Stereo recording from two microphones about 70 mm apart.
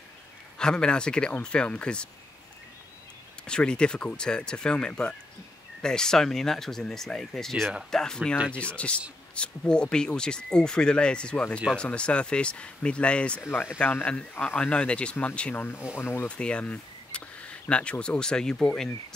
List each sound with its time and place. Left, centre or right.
0.6 s speech: centre
3.4 s speech: centre
13.4 s speech: left
14.6 s speech: centre
15.5 s speech: left
16.2 s speech: centre